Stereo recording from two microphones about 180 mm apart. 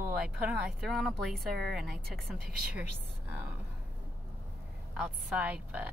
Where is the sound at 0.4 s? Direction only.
5° right (ahead or behind).